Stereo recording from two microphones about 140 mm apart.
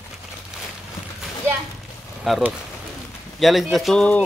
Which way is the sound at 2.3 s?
Centre (ahead or behind).